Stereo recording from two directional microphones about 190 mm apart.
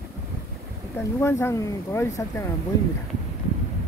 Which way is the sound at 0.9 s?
15° left (ahead or behind).